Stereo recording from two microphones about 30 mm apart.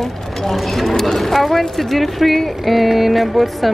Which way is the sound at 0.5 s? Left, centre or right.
Centre.